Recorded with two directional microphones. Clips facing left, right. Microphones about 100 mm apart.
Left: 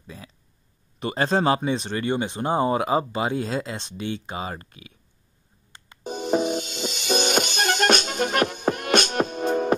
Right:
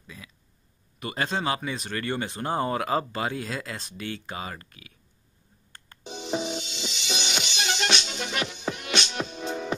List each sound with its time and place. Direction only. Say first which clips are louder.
0.0 s a sound: left 4 dB; 30° left (ahead or behind)
0.9 s speech: left 7 dB; 30° left (ahead or behind)
6.0 s music: left 7 dB; 45° left (ahead or behind)